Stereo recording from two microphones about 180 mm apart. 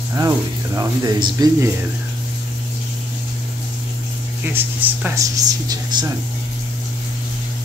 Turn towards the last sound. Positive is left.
turn(degrees=-20)  # may be behind; listen again after turning